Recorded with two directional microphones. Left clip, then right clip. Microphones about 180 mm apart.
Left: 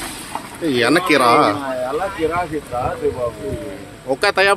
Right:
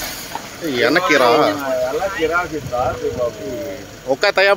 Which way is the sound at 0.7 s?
30° left (ahead or behind).